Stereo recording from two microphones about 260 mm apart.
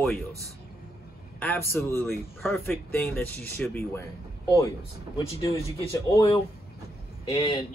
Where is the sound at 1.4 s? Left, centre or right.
Centre.